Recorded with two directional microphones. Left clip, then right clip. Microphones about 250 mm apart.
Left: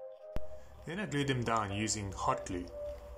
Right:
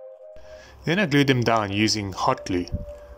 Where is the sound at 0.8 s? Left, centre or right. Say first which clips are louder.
Right 15 dB; right.